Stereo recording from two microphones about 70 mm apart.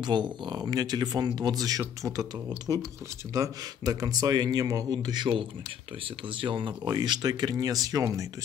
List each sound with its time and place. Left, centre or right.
0.0 s speech: right
2.7 s speech: right
3.3 s speech: right
6.8 s speech: right